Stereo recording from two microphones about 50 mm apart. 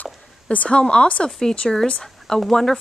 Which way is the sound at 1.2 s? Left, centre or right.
Centre.